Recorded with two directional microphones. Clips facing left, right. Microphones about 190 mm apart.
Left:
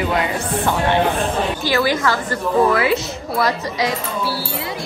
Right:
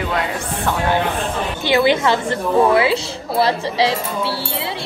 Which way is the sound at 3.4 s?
30° right (ahead or behind).